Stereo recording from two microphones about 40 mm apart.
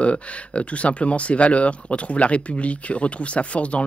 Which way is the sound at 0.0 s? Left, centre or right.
Left.